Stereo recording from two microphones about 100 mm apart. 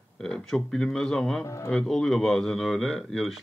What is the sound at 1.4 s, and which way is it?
Speech, 30° left (ahead or behind).